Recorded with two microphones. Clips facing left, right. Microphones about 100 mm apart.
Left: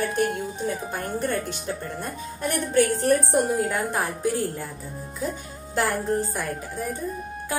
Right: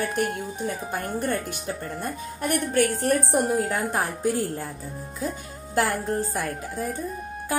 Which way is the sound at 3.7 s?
15° right (ahead or behind).